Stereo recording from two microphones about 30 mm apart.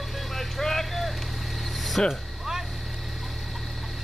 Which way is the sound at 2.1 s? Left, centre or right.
Centre.